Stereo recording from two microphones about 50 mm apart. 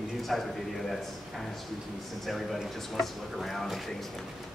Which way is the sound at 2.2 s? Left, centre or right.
Centre.